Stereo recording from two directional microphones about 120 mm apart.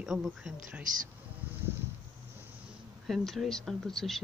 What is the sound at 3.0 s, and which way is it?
Speech, centre (ahead or behind).